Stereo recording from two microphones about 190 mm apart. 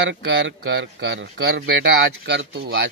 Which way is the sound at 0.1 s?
70° right (ahead or behind).